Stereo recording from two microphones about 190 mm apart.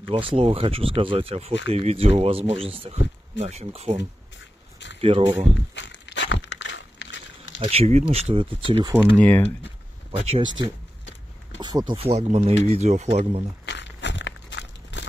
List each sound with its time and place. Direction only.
0.1 s speech: 30° right (ahead or behind)
5.0 s speech: 30° right (ahead or behind)
5.8 s crumpling: 70° left (ahead or behind)
7.6 s speech: 30° right (ahead or behind)
9.2 s speech: 10° left (ahead or behind)
10.2 s speech: 25° right (ahead or behind)
11.5 s a sound: 20° right (ahead or behind)
11.9 s speech: 30° right (ahead or behind)
13.7 s a sound: 70° left (ahead or behind)